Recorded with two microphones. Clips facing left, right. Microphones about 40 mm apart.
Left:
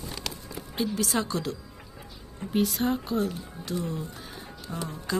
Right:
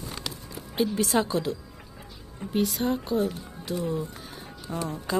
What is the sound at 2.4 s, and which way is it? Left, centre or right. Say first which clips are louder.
Speech: even; centre.